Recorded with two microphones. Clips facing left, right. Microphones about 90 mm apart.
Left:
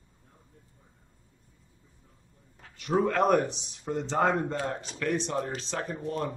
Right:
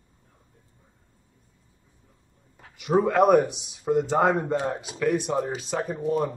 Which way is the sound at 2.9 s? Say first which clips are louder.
Right 5 dB; 10° right (ahead or behind).